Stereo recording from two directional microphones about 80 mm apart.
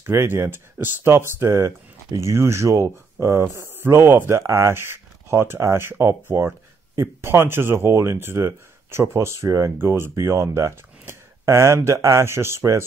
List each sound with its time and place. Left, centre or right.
0.0 s speech: right